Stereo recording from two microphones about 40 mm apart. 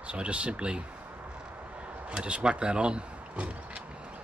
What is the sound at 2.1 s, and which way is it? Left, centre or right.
Speech, right.